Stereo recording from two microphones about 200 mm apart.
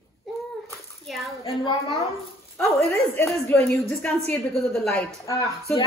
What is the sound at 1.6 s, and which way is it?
A woman's voice, 15° left (ahead or behind).